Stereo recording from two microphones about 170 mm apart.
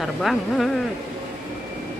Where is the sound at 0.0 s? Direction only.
Centre (ahead or behind).